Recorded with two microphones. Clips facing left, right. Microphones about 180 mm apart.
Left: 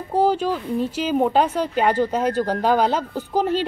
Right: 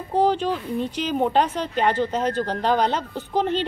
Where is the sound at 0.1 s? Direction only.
10° left (ahead or behind).